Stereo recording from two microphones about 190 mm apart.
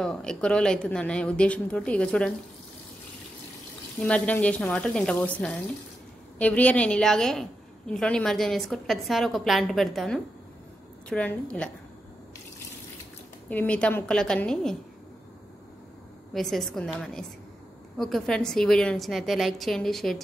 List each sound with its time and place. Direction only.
0.0 s a woman's voice: 5° left (ahead or behind)
4.0 s a woman's voice: 5° left (ahead or behind)
13.5 s a woman's voice: 10° left (ahead or behind)
16.3 s a woman's voice: centre (ahead or behind)